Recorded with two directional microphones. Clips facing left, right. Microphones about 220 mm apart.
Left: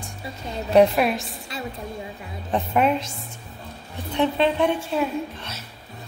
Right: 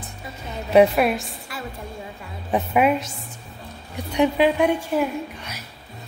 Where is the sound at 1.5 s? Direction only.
20° left (ahead or behind).